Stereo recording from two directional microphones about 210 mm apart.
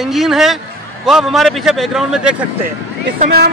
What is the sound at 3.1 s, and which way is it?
Speech, 50° right (ahead or behind).